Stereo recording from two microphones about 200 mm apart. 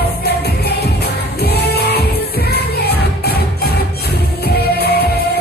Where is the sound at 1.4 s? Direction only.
55° left (ahead or behind).